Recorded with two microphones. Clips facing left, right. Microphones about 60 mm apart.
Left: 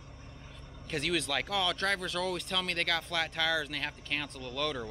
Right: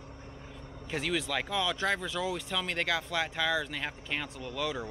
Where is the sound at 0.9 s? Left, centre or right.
Centre.